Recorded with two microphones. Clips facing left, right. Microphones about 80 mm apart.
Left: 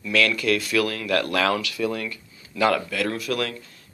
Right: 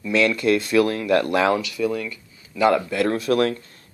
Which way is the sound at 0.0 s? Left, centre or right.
Right.